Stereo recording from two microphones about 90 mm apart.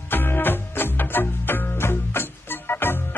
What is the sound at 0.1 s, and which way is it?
Music, 25° left (ahead or behind).